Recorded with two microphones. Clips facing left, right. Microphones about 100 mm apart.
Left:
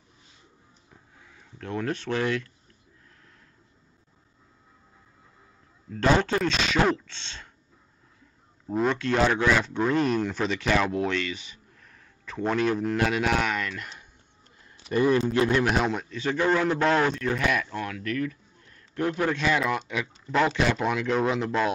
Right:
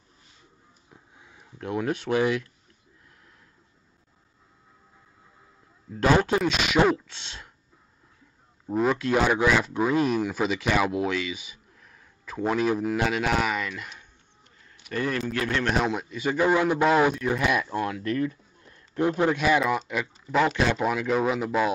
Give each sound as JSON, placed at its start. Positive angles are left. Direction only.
{"t": 1.1, "sound": "speech", "side_deg": -20}
{"t": 5.9, "sound": "a man's voice", "side_deg": -10}
{"t": 8.7, "sound": "speech", "side_deg": -5}
{"t": 14.8, "sound": "a man's voice", "side_deg": 20}
{"t": 15.6, "sound": "a man's voice", "side_deg": 0}